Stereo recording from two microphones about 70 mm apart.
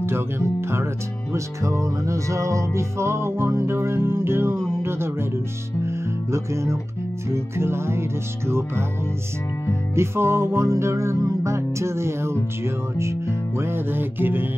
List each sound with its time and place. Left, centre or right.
0.0 s music: right
9.9 s music: right